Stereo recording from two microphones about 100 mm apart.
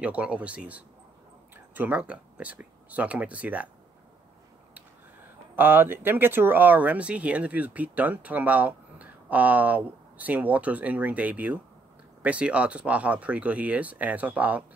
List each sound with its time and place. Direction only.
0.0 s speech: 15° right (ahead or behind)
4.7 s speech: 20° right (ahead or behind)